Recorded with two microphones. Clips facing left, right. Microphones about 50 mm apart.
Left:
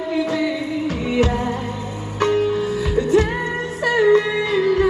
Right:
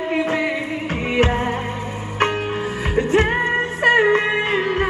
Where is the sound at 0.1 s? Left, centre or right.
Right.